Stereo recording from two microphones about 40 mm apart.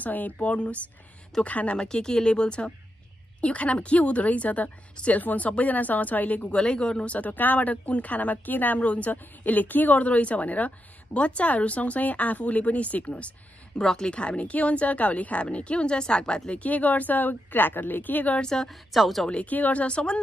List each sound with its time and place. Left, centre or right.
0.0 s speech: left
1.8 s a woman's voice: centre; by 6.5 s left
6.5 s speech: left
8.8 s speech: left
13.7 s speech: centre
16.5 s speech: left
18.4 s a woman's voice: centre
18.7 s a woman's voice: centre
19.3 s speech: left